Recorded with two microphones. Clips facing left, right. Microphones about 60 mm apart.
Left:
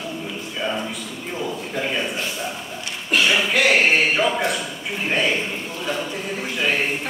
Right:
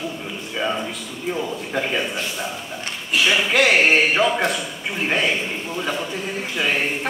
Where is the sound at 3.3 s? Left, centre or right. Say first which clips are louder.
Right 1 dB; centre.